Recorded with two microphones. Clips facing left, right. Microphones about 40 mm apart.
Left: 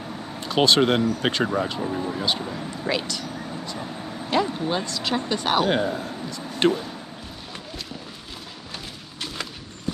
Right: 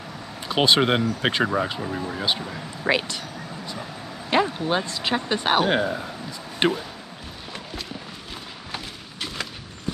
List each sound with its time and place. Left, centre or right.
0.5 s speech: centre
2.9 s speech: right
4.3 s speech: right
9.2 s a sound: centre